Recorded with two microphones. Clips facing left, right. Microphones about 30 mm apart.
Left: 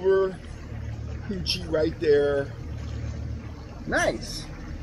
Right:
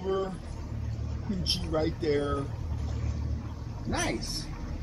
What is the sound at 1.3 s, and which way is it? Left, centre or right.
Speech, left.